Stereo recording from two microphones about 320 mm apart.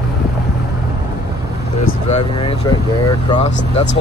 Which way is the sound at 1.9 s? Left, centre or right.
Centre.